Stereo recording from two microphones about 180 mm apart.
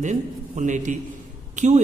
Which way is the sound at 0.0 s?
40° right (ahead or behind).